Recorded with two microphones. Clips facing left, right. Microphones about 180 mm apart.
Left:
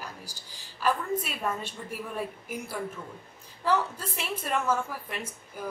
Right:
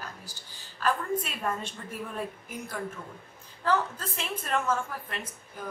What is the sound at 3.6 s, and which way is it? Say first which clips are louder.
A woman's voice: even; 10° left (ahead or behind).